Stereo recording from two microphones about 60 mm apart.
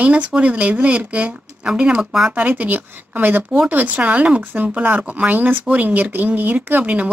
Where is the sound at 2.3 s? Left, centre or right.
Right.